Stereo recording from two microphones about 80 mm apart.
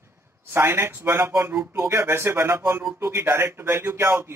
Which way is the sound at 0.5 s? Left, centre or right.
Right.